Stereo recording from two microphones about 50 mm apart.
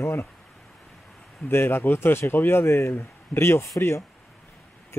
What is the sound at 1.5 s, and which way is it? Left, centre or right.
Speech, left.